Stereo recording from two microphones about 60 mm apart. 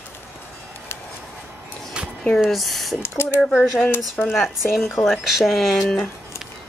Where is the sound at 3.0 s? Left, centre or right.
Left.